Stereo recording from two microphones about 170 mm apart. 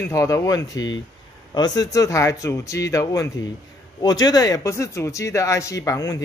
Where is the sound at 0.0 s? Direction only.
20° left (ahead or behind).